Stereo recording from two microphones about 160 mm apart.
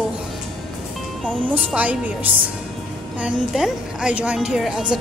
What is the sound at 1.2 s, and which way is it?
Speech, 5° left (ahead or behind).